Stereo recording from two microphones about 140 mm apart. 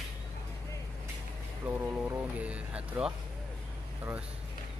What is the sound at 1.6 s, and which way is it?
Speech, 15° right (ahead or behind).